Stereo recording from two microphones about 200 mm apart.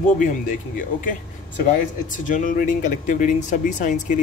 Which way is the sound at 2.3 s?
40° left (ahead or behind).